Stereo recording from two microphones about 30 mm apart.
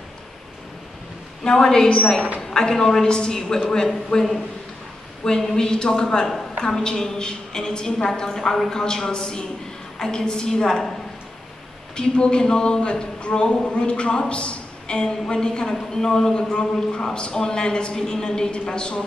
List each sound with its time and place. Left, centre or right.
1.4 s a woman's voice: left
5.4 s a woman's voice: centre
5.7 s a woman's voice: left
12.0 s speech: left
14.3 s a sound: left
15.0 s a woman's voice: left
16.3 s a woman's voice: left